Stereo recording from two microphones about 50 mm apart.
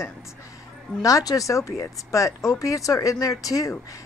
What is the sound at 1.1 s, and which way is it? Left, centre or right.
Speech, left.